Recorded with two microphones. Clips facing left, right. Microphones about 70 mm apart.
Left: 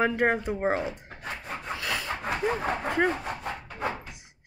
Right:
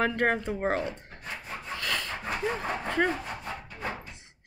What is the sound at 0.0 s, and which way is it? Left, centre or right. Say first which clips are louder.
Speech: left 2 dB; centre.